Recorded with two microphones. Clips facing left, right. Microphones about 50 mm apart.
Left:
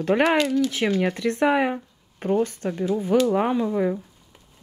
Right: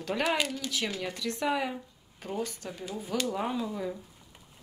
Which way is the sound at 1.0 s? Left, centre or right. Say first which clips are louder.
Left 11 dB; left.